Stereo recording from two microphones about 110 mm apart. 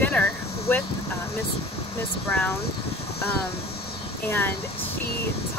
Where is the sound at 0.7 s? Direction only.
15° left (ahead or behind).